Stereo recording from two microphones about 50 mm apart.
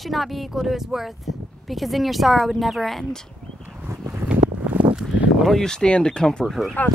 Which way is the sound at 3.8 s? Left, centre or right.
Right.